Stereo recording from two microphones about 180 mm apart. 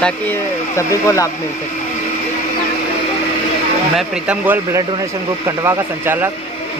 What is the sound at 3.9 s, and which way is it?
Speech, 10° right (ahead or behind).